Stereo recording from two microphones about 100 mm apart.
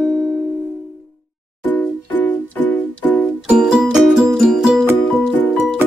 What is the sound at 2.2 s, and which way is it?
Music, 15° left (ahead or behind).